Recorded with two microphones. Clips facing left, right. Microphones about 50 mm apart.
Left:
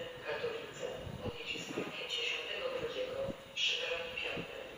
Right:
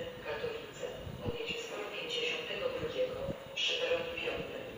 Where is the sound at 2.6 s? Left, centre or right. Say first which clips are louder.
Right 5 dB; centre.